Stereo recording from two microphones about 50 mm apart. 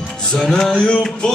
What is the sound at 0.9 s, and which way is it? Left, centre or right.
Music, left.